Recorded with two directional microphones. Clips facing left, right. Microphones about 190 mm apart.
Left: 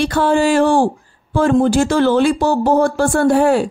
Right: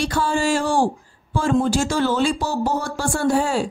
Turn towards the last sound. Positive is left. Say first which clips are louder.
# left 7 dB
turn(degrees=60)  # may be behind; listen again after turning